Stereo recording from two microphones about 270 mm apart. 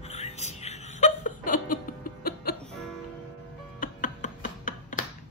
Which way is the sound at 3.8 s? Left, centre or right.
Left.